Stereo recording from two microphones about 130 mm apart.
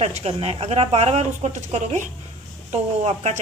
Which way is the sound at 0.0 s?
55° right (ahead or behind).